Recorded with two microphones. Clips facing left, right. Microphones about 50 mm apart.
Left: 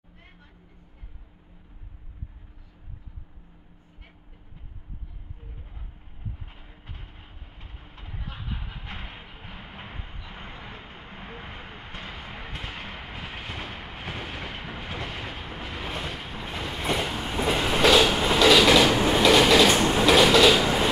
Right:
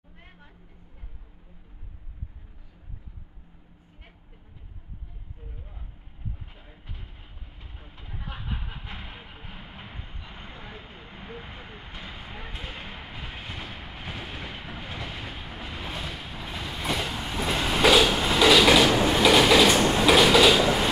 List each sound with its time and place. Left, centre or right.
8.3 s train: centre
8.8 s vehicle: left
9.1 s vehicle: centre
9.4 s vehicle: left
10.5 s vehicle: left
10.9 s vehicle: left
12.4 s a sound: left
13.5 s train: centre
15.3 s vehicle: centre
16.1 s train: centre